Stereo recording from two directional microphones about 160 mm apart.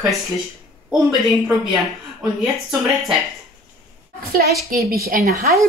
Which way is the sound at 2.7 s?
Centre (ahead or behind).